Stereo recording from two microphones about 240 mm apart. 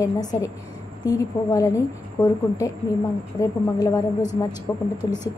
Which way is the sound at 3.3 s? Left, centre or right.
Centre.